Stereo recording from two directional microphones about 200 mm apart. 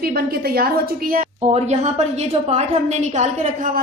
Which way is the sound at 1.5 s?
35° right (ahead or behind).